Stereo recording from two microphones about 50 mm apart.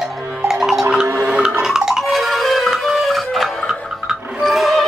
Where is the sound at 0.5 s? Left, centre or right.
Centre.